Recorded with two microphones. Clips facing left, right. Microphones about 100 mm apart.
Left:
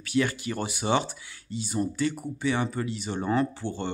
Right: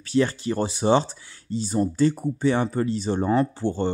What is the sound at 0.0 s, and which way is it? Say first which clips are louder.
Speech: right 4 dB; 30° right (ahead or behind).